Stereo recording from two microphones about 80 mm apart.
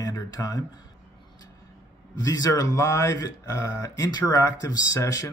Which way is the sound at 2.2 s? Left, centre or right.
Left.